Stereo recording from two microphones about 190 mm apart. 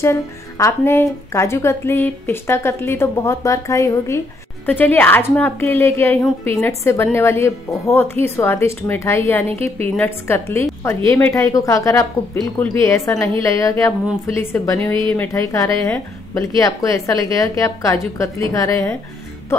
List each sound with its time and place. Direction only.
0.0 s a woman's voice: 15° left (ahead or behind)